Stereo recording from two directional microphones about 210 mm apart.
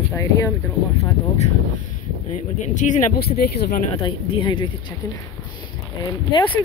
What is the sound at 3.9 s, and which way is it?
Speech, 25° left (ahead or behind).